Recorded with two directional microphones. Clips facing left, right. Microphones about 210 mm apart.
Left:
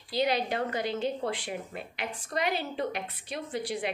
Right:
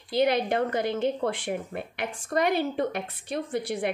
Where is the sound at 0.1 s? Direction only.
55° right (ahead or behind).